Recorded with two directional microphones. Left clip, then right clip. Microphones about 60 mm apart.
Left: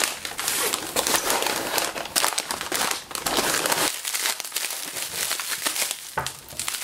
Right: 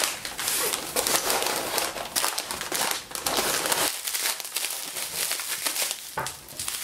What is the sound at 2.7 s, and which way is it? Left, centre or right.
Crumpling, left.